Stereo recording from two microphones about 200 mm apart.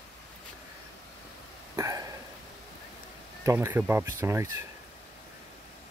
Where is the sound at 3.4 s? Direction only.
10° right (ahead or behind).